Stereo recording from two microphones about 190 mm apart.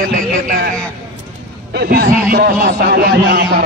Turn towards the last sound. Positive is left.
turn(degrees=-55)  # may be behind; listen again after turning